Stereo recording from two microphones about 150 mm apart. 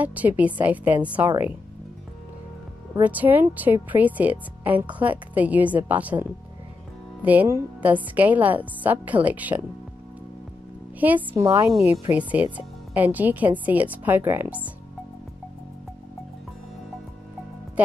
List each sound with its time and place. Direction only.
0.0 s a woman's voice: 10° right (ahead or behind)
3.0 s a woman's voice: 10° right (ahead or behind)
7.2 s a woman's voice: 15° right (ahead or behind)
11.0 s a woman's voice: 10° right (ahead or behind)
17.8 s speech: 10° right (ahead or behind)